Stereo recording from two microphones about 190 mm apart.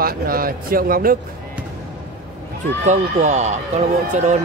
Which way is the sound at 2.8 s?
40° right (ahead or behind).